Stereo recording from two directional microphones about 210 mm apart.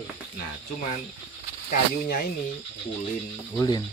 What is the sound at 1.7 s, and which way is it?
Speech, 45° left (ahead or behind).